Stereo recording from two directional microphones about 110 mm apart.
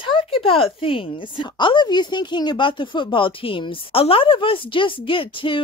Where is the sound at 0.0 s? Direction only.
50° left (ahead or behind).